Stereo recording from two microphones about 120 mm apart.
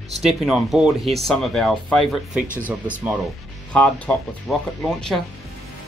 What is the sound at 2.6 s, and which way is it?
Speech, 15° right (ahead or behind).